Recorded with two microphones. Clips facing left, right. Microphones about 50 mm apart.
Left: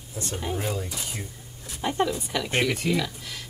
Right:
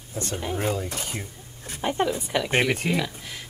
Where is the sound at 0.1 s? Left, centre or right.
Right.